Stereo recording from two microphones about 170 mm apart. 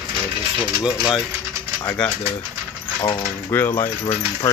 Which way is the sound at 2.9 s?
30° left (ahead or behind).